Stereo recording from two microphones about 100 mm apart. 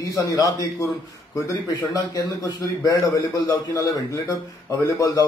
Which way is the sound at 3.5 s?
45° left (ahead or behind).